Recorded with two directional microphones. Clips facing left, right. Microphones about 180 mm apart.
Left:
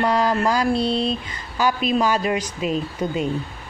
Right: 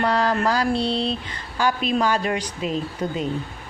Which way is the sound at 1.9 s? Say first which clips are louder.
Left 2 dB; 10° left (ahead or behind).